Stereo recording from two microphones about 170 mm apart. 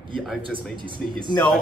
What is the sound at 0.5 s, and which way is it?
Speech, 30° right (ahead or behind).